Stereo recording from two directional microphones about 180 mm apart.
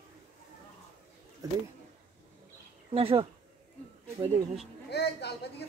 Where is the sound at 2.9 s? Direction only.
30° right (ahead or behind).